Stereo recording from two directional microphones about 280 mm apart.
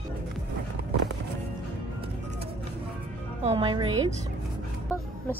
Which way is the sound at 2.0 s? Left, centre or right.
Right.